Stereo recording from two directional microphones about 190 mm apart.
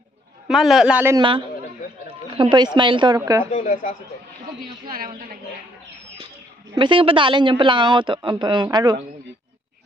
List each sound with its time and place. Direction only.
0.5 s a man's voice: centre (ahead or behind)
1.1 s speech: 25° right (ahead or behind)
2.5 s speech: 25° right (ahead or behind)
3.5 s a woman's voice: 40° left (ahead or behind)
4.9 s speech: 50° right (ahead or behind)
6.7 s speech: 25° right (ahead or behind)